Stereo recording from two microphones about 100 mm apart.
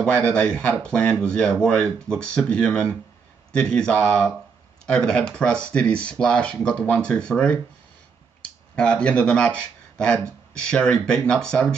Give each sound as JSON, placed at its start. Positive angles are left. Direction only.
{"t": 0.0, "sound": "speech", "side_deg": 10}
{"t": 8.7, "sound": "speech", "side_deg": 10}